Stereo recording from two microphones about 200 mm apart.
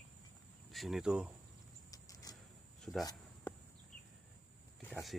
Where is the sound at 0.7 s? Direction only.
Centre (ahead or behind).